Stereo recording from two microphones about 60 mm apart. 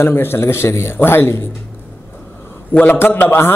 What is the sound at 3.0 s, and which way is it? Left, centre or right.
Speech, left.